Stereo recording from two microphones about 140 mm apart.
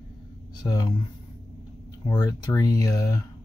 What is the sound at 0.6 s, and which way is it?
Speech, 30° left (ahead or behind).